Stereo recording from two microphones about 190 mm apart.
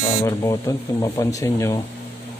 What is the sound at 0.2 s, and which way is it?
Speech, 15° left (ahead or behind).